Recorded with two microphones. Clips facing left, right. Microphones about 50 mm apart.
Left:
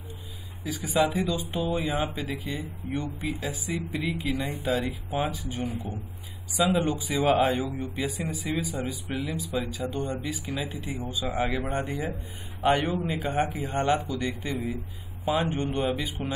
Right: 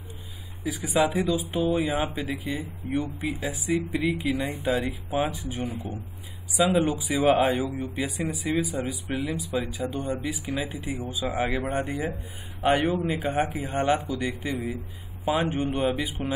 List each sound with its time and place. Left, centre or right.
0.7 s speech: centre
9.5 s speech: centre